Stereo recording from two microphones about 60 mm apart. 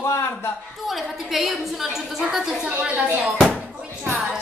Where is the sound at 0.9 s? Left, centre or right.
Centre.